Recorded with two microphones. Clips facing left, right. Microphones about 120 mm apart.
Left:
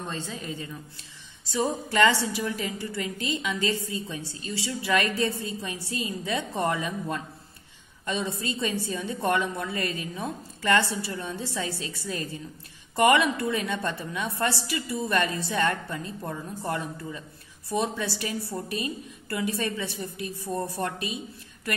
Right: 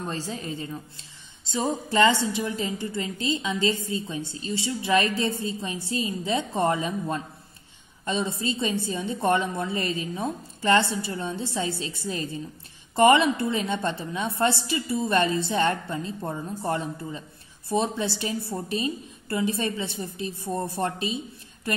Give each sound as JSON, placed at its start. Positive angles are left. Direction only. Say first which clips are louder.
{"t": 0.1, "sound": "a woman's voice", "louder": "right 3 dB", "side_deg": -30}